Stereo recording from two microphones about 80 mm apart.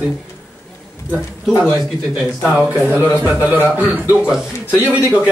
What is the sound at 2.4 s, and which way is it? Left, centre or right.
Speech, centre.